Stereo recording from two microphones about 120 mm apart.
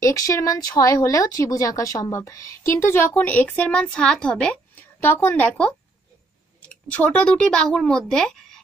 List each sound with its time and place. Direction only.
0.0 s a woman's voice: 25° left (ahead or behind); by 8.6 s 5° left (ahead or behind)